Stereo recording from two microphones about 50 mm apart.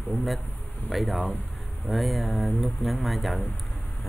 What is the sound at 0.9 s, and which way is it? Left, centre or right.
Speech, centre.